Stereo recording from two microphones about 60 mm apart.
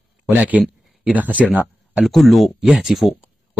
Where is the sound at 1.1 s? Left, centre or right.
Right.